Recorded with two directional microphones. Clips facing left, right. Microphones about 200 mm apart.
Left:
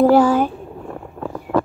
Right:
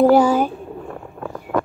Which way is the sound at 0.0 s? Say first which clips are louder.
Even; centre (ahead or behind).